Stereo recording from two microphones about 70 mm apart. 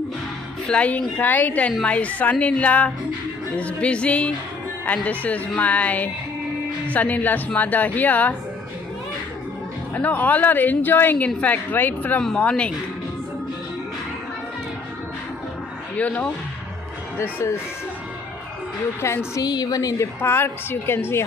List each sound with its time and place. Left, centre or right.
0.7 s a woman's voice: centre
9.9 s a woman's voice: left
12.4 s speech: centre
16.0 s a woman's voice: left
17.2 s a woman's voice: left
18.9 s a woman's voice: left
19.4 s a woman's voice: left
20.0 s a woman's voice: left